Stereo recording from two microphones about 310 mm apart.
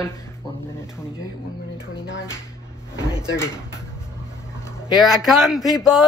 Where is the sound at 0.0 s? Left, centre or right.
Centre.